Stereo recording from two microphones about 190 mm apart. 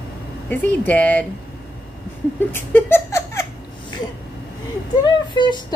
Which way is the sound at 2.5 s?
10° left (ahead or behind).